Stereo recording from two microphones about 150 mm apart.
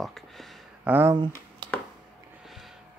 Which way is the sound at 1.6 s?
30° right (ahead or behind).